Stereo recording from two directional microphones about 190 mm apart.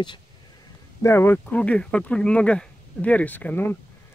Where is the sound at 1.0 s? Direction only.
15° left (ahead or behind).